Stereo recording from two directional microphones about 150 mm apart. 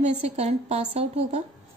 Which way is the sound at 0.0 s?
45° right (ahead or behind).